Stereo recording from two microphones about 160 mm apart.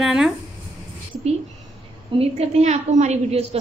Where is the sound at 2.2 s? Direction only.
45° right (ahead or behind).